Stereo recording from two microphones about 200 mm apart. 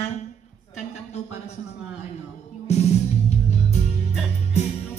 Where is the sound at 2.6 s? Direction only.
35° left (ahead or behind).